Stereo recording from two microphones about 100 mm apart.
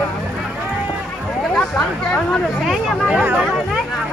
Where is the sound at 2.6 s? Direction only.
10° right (ahead or behind).